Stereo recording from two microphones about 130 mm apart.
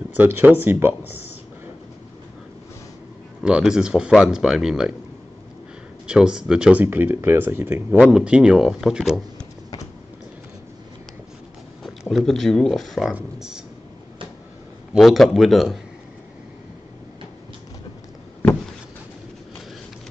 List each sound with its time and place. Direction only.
0.2 s speech: 15° right (ahead or behind)
3.4 s speech: 5° right (ahead or behind)
6.0 s speech: 5° right (ahead or behind)
8.0 s speech: 5° right (ahead or behind)
12.1 s speech: centre (ahead or behind)
15.0 s speech: centre (ahead or behind)